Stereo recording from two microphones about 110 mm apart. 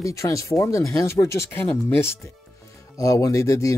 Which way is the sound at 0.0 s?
30° left (ahead or behind).